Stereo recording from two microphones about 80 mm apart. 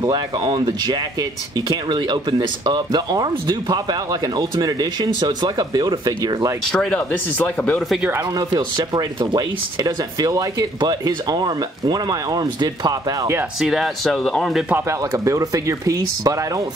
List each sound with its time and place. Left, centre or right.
0.0 s speech: right
6.7 s speech: centre
8.7 s speech: right
9.8 s speech: right
13.6 s speech: centre
14.9 s speech: right